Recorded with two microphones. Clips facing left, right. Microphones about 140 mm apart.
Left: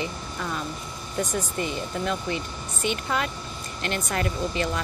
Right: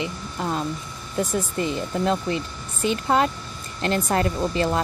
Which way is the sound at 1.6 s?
30° right (ahead or behind).